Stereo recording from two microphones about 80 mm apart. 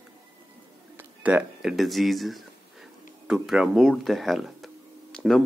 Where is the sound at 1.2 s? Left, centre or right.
Centre.